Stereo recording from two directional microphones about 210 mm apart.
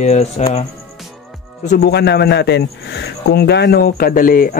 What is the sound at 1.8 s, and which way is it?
A man's voice, 50° left (ahead or behind).